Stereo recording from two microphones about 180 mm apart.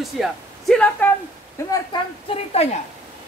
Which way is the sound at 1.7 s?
25° left (ahead or behind).